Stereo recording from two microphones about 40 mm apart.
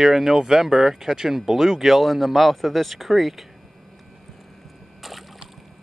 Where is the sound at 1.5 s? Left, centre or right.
Centre.